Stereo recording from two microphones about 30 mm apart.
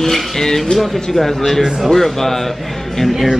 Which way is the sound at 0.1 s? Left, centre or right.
Centre.